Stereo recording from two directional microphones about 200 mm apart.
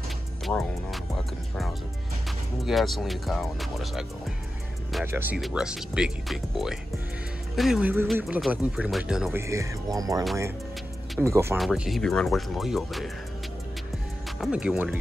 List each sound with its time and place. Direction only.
0.5 s speech: centre (ahead or behind)
5.0 s speech: 10° right (ahead or behind)
9.5 s speech: 15° right (ahead or behind)
11.5 s speech: centre (ahead or behind)
14.4 s speech: 5° right (ahead or behind)